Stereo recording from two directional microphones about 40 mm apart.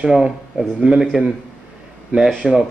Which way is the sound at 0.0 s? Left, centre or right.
Centre.